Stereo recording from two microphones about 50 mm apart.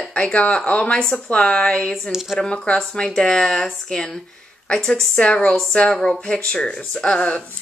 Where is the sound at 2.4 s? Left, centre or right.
Centre.